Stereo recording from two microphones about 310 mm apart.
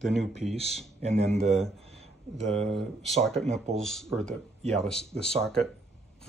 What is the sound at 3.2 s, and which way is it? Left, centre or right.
Speech, centre.